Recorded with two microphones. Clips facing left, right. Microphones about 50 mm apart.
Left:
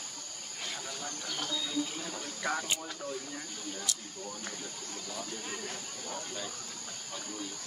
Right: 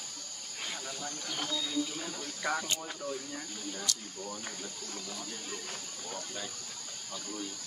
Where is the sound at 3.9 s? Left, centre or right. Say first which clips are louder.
Right 4 dB; centre.